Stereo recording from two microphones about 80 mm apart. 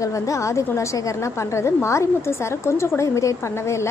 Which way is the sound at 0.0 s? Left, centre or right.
Left.